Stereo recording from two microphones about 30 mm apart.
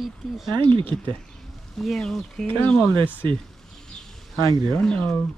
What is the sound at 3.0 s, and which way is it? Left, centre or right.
Speech, left.